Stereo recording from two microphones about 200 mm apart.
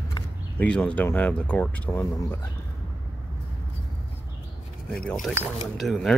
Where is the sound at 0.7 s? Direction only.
5° left (ahead or behind).